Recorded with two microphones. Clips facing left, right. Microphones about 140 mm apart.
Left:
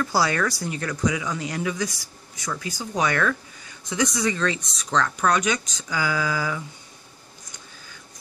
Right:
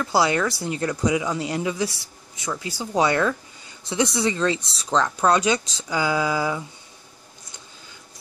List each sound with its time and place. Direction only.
0.0 s speech: 20° right (ahead or behind)